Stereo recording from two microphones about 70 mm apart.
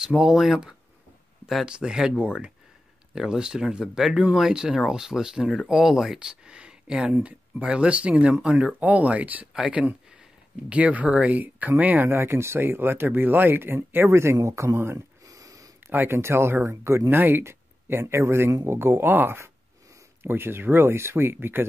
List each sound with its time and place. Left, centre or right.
0.0 s speech: centre
1.4 s a sound: centre
1.7 s speech: centre
12.2 s speech: right
15.2 s sniff: right
15.9 s speech: right